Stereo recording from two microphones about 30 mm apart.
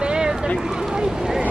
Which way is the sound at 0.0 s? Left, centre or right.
Right.